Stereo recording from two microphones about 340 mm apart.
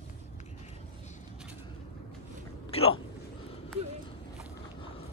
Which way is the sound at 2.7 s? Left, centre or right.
Centre.